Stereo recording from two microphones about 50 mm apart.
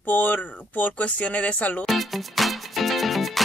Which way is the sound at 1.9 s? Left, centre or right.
Centre.